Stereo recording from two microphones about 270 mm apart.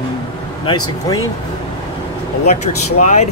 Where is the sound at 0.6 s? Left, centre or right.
Centre.